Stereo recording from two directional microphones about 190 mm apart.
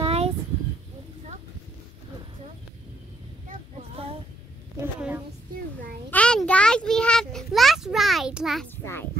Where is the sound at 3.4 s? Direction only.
30° right (ahead or behind).